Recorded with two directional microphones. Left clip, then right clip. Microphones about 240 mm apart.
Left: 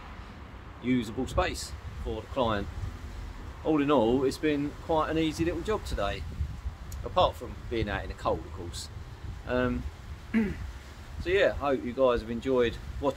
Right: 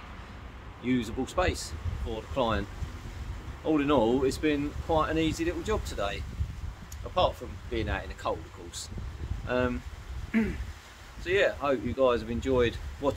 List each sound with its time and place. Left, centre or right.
0.8 s speech: centre
3.6 s speech: centre